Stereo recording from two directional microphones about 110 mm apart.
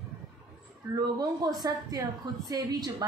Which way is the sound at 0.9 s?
35° right (ahead or behind).